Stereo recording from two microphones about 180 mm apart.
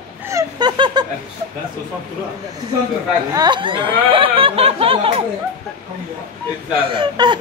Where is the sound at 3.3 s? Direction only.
25° right (ahead or behind).